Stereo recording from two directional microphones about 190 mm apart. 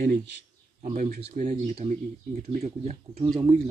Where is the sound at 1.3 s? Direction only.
40° right (ahead or behind).